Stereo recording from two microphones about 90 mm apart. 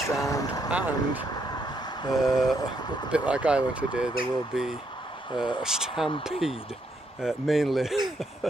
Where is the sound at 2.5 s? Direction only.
50° left (ahead or behind).